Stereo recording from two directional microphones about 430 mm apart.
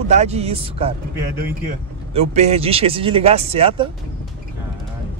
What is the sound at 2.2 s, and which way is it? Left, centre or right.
Speech, centre.